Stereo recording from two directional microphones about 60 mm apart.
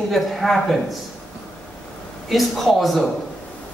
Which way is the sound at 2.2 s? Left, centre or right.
Centre.